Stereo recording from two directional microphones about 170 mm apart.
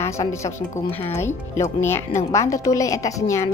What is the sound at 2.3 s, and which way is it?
A woman's voice, 20° left (ahead or behind).